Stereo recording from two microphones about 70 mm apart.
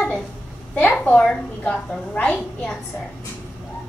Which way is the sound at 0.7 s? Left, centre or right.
Centre.